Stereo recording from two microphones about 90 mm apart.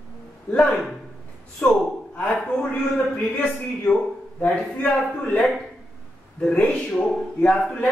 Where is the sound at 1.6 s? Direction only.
20° left (ahead or behind).